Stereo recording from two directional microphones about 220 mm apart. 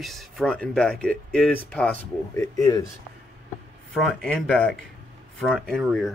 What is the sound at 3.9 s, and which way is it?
Speech, centre (ahead or behind).